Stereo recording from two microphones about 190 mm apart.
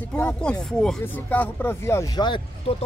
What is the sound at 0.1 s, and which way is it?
Speech, 5° left (ahead or behind).